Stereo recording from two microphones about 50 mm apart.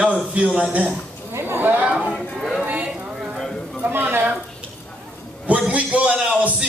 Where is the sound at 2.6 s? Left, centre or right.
Right.